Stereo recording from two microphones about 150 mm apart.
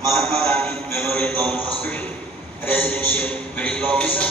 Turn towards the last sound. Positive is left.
turn(degrees=10)  # may be behind; listen again after turning